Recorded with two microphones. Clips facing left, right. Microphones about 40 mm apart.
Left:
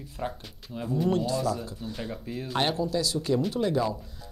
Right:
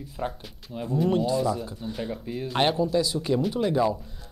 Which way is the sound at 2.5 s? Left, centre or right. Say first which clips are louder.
Right 4 dB; centre.